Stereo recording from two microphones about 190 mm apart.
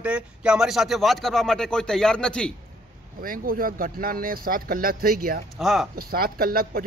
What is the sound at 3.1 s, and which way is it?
Speech, 50° right (ahead or behind).